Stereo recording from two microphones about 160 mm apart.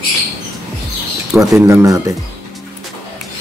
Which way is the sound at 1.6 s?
15° right (ahead or behind).